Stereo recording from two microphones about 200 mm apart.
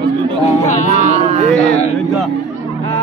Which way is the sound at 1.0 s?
35° right (ahead or behind).